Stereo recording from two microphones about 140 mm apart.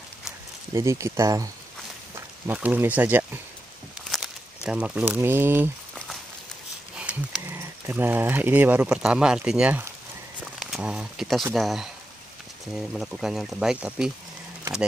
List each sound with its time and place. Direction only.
0.7 s speech: 20° right (ahead or behind)
4.6 s speech: 10° right (ahead or behind)
7.1 s pig: 10° right (ahead or behind)
7.4 s speech: 15° right (ahead or behind)